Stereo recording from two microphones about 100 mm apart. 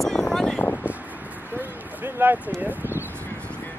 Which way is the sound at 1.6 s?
20° right (ahead or behind).